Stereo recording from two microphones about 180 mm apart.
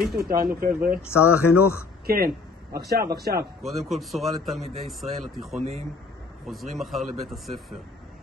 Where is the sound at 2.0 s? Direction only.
55° right (ahead or behind).